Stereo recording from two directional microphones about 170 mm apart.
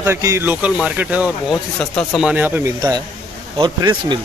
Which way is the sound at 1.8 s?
5° left (ahead or behind).